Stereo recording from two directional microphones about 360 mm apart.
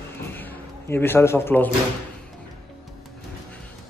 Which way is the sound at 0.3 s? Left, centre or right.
Centre.